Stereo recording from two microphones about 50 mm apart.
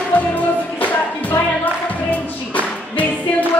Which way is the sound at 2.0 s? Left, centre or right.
Left.